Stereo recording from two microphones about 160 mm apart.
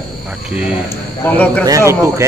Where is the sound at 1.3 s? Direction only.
10° left (ahead or behind).